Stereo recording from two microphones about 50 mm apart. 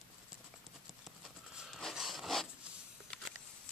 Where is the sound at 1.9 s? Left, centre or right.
Centre.